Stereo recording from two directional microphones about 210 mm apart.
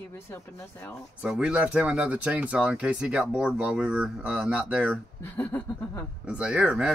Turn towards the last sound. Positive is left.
turn(degrees=-5)  # may be behind; listen again after turning